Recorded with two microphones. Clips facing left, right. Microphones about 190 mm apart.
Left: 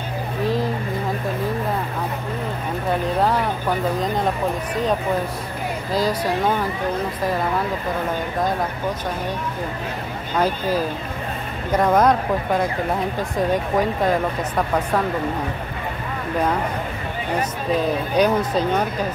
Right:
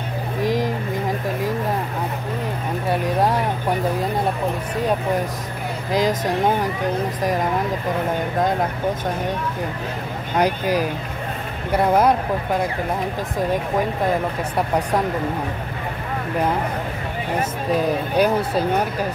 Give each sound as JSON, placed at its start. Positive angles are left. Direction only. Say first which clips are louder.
{"t": 0.4, "sound": "vehicle", "louder": "right 1 dB", "side_deg": -15}
{"t": 2.9, "sound": "vehicle", "louder": "even", "side_deg": -10}
{"t": 5.9, "sound": "speech", "louder": "right 2 dB", "side_deg": -15}
{"t": 10.3, "sound": "speech", "louder": "right 1 dB", "side_deg": -15}
{"t": 18.1, "sound": "speech", "louder": "left 1 dB", "side_deg": -5}